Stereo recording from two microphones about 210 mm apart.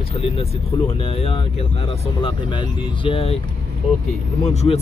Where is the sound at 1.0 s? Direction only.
25° left (ahead or behind).